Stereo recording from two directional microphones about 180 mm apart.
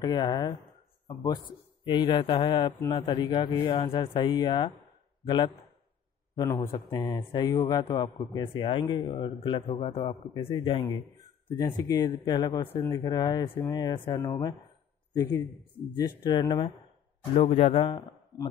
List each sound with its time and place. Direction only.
0.0 s speech: 20° left (ahead or behind)
11.0 s speech: 15° left (ahead or behind)
15.2 s speech: 10° left (ahead or behind)
16.3 s speech: 25° left (ahead or behind)
17.4 s a man's voice: 35° left (ahead or behind)